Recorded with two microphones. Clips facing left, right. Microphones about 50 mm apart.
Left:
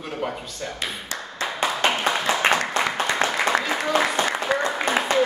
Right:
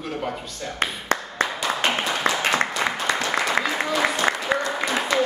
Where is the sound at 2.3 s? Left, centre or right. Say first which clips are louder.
Left 3 dB; left.